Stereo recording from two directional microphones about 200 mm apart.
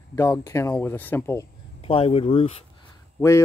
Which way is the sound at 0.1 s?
15° left (ahead or behind).